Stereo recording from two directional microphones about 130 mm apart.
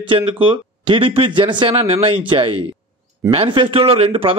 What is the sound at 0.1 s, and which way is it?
A man's voice, 40° right (ahead or behind).